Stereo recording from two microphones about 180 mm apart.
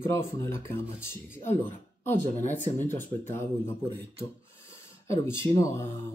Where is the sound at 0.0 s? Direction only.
15° left (ahead or behind).